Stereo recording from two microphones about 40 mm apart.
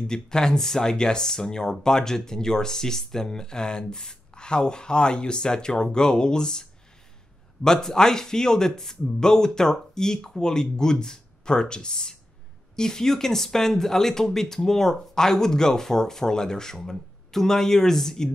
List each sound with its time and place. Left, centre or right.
0.0 s speech: centre